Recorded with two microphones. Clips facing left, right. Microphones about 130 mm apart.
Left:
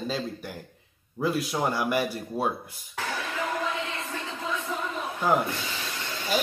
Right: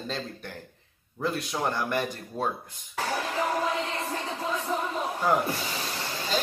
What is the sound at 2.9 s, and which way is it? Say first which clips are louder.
Music: right 3 dB; 35° right (ahead or behind).